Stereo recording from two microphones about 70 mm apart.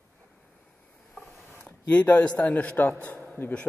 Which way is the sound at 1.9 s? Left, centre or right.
Left.